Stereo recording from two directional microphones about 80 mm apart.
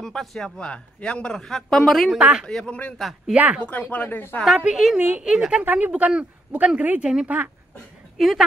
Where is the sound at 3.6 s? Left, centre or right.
Centre.